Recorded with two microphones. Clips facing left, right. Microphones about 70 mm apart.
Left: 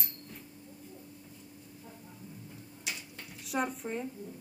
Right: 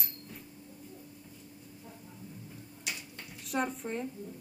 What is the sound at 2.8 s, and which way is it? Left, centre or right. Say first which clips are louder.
Drawer open or close: even; centre.